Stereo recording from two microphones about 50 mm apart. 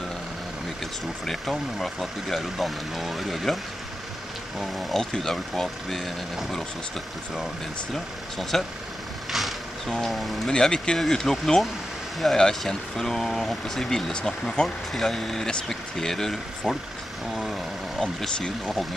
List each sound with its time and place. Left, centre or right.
1.2 s speech: centre
4.6 s speech: centre
7.9 s speech: centre
9.3 s vehicle: centre
10.5 s speech: centre